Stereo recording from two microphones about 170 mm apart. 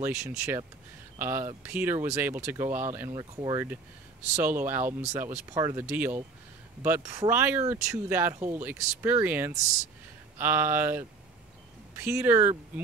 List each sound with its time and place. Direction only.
0.0 s speech: 15° right (ahead or behind)
3.2 s speech: 25° right (ahead or behind)
4.4 s speech: 10° right (ahead or behind)